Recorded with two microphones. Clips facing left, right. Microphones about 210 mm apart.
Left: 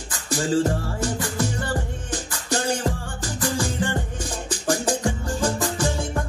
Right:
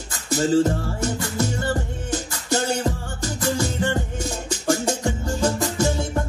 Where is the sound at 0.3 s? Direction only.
20° right (ahead or behind).